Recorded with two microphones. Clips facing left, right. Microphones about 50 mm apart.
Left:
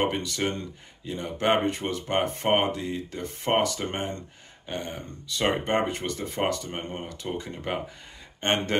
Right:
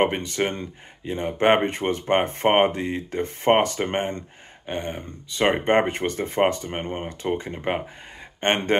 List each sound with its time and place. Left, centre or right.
0.0 s speech: right